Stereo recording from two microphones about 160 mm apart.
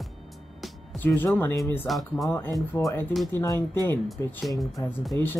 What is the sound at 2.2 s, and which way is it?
Speech, 15° left (ahead or behind).